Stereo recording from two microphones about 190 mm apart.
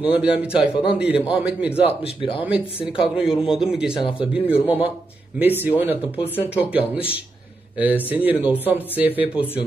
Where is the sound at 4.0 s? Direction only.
25° left (ahead or behind).